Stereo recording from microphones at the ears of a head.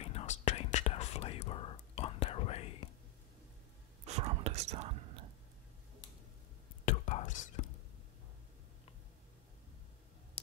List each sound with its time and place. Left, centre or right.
0.0 s whispering: left
4.0 s whispering: right
6.9 s whispering: left